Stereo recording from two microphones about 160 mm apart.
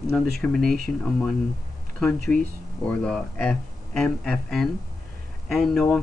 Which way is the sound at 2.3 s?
10° left (ahead or behind).